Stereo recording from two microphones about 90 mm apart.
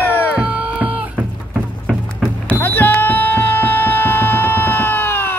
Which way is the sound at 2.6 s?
20° left (ahead or behind).